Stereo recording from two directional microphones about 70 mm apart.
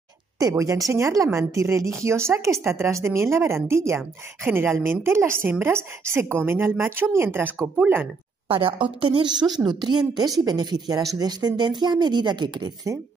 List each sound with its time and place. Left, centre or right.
0.4 s a woman's voice: right
9.2 s speech: right